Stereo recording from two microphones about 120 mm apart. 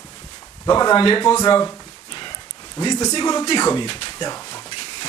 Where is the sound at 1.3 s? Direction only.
35° left (ahead or behind).